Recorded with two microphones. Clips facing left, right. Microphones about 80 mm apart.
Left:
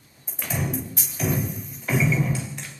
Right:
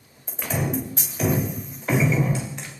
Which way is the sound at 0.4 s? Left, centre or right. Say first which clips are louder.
Right 3 dB; centre.